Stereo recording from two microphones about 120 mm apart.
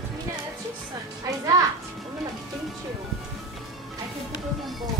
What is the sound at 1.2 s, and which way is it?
Music, 30° right (ahead or behind).